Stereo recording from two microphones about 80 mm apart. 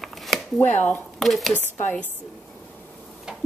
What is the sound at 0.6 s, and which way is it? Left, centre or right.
Speech, left.